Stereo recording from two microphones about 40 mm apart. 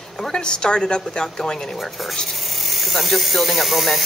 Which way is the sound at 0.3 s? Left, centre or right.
Centre.